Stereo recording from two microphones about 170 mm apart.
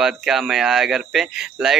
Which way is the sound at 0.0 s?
5° right (ahead or behind).